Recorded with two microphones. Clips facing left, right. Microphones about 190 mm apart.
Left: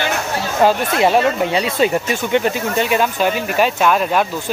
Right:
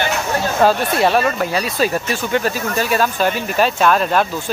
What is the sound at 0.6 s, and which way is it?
Speech, 20° left (ahead or behind).